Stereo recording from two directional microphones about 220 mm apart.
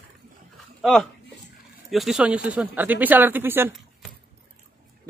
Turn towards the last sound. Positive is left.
turn(degrees=-5)  # may be behind; listen again after turning